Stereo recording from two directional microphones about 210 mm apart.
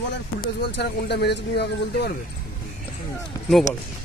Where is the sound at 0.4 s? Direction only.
50° left (ahead or behind).